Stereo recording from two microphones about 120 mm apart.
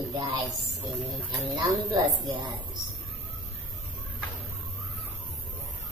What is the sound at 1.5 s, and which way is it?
Speech, 40° right (ahead or behind).